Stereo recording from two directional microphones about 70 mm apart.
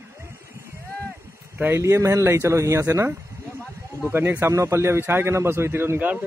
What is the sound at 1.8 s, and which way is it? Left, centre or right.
Speech, right.